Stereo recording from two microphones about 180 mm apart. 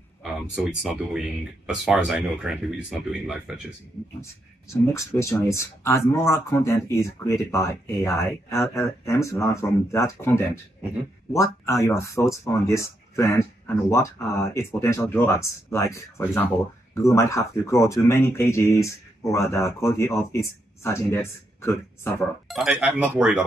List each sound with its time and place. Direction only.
0.2 s speech: 5° right (ahead or behind)
4.9 s speech: 15° left (ahead or behind)
22.5 s speech: centre (ahead or behind)